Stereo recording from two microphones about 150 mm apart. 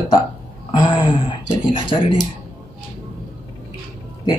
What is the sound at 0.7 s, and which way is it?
Speech, 35° left (ahead or behind).